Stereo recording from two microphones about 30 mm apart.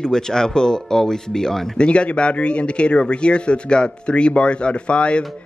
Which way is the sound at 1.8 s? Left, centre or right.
Left.